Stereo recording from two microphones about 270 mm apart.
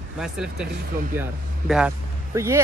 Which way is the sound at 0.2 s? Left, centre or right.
Centre.